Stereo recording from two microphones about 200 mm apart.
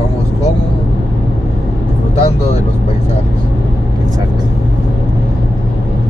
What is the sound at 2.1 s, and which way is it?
Vehicle, 30° left (ahead or behind).